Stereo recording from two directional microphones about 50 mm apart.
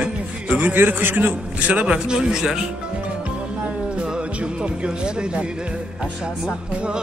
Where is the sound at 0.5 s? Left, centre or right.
Right.